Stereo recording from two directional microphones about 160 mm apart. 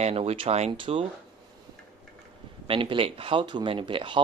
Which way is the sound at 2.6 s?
30° right (ahead or behind).